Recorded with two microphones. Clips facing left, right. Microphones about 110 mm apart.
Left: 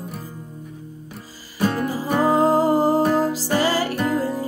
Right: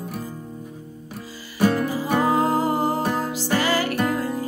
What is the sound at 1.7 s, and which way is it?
Music, 35° left (ahead or behind).